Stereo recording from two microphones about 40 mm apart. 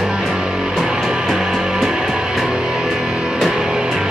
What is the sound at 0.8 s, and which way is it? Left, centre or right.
Music, centre.